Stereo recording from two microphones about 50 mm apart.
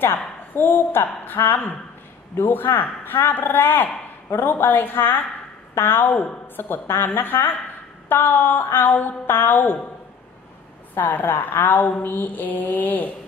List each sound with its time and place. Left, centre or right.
0.0 s a woman's voice: left
11.0 s a woman's voice: left